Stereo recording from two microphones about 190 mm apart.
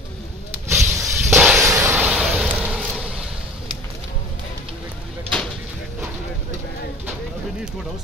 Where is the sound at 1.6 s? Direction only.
15° right (ahead or behind).